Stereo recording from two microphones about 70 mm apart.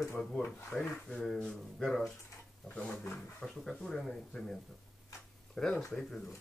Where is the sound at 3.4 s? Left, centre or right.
Centre.